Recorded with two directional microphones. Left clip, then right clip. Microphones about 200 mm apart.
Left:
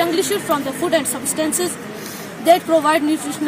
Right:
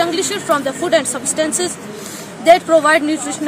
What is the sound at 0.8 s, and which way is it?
Speech, centre (ahead or behind).